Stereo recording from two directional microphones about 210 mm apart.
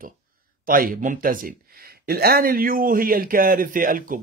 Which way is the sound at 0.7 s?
40° right (ahead or behind).